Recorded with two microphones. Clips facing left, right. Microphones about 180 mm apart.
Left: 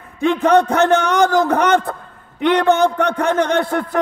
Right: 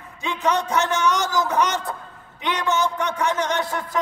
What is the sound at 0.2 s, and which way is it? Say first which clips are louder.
A man's voice: left 10 dB; 55° left (ahead or behind).